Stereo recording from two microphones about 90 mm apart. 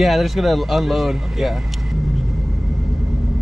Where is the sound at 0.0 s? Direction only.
Centre (ahead or behind).